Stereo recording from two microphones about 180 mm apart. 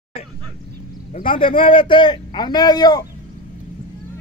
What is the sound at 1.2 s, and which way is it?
A man's voice, 30° left (ahead or behind).